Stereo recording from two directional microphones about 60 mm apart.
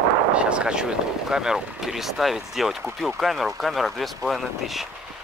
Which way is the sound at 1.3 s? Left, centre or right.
Centre.